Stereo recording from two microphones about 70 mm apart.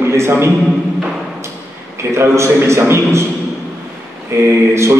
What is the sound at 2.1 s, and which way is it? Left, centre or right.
A man's voice, right.